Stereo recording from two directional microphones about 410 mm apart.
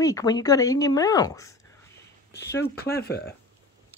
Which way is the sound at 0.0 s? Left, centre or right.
Centre.